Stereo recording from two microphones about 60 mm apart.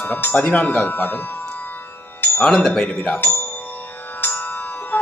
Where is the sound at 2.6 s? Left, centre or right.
Centre.